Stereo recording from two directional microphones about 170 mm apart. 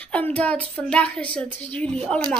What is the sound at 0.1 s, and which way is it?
Speech, 10° left (ahead or behind).